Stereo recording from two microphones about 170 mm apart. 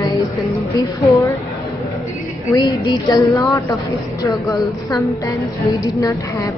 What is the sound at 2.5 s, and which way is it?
A woman's voice, 25° left (ahead or behind).